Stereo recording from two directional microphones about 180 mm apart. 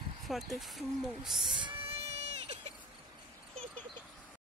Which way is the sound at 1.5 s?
30° right (ahead or behind).